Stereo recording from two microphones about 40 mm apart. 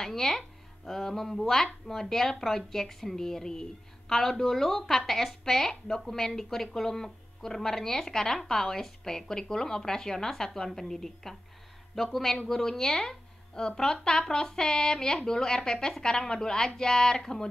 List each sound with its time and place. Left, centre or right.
0.0 s a woman's voice: centre